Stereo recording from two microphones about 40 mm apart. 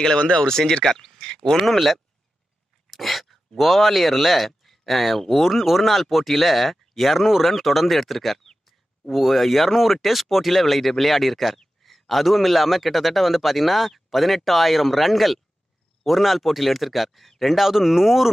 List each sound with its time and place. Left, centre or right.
0.2 s speech: left
0.8 s speech: centre
1.1 s a sound: centre
1.6 s a man's voice: centre